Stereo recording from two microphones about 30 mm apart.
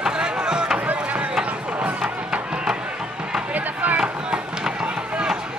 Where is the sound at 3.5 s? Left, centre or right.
Right.